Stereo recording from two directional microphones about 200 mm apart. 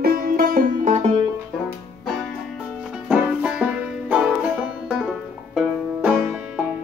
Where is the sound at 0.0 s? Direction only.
45° right (ahead or behind).